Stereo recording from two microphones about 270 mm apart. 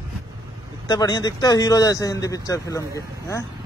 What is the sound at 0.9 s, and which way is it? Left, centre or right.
A man's voice, centre.